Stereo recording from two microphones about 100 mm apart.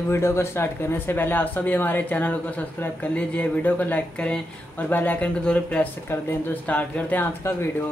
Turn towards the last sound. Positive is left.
turn(degrees=20)  # may be behind; listen again after turning